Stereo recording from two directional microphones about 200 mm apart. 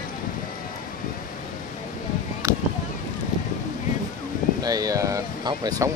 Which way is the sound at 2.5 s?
15° right (ahead or behind).